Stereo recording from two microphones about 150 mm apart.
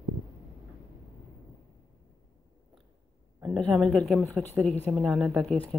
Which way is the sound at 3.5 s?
Centre (ahead or behind).